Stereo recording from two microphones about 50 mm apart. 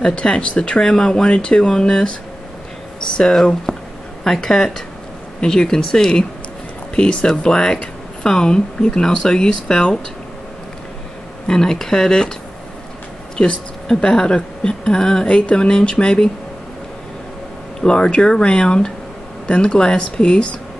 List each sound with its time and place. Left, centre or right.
0.0 s speech: centre
3.7 s a sound: centre
4.2 s a woman's voice: centre
11.4 s a woman's voice: centre
13.4 s a woman's voice: centre
17.7 s a woman's voice: centre